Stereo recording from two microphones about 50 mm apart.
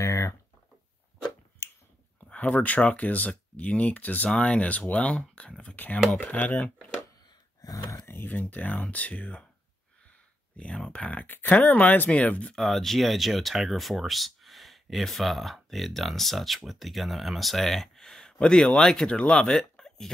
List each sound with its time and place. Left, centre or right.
0.0 s a sound: left
1.6 s finger snapping: left
2.1 s speech: left
5.8 s speech: left
8.1 s a sound: left
8.4 s speech: left
10.0 s a sound: left
10.9 s speech: left
11.2 s speech: left
12.1 s speech: left
12.5 s speech: centre